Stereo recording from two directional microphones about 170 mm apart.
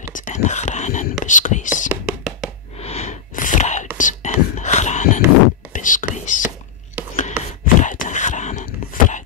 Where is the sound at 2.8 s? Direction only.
40° left (ahead or behind).